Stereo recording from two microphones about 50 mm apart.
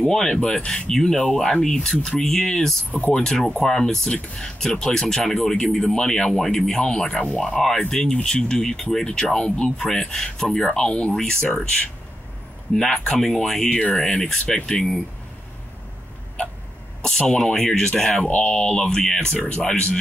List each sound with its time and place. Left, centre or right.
0.1 s speech: centre
0.4 s speech: centre
0.8 s speech: centre
2.9 s speech: left
3.2 s speech: centre
12.7 s speech: centre
13.7 s speech: left
17.3 s speech: centre